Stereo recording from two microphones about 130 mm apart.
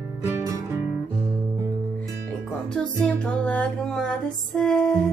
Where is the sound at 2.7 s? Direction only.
5° left (ahead or behind).